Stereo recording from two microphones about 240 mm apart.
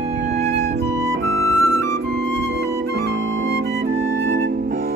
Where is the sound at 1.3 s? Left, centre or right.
Right.